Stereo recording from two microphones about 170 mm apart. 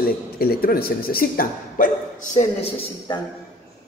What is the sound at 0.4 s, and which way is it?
Speech, 60° left (ahead or behind).